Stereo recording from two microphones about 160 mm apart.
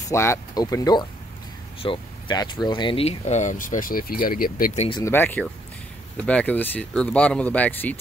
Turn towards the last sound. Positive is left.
turn(degrees=10)  # may be behind; listen again after turning